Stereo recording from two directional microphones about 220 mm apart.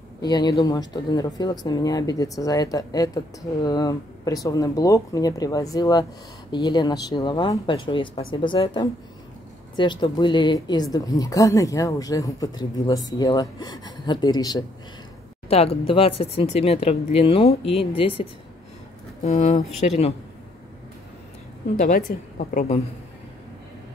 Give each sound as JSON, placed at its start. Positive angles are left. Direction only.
{"t": 0.2, "sound": "a woman's voice", "side_deg": 20}
{"t": 21.7, "sound": "a woman's voice", "side_deg": 35}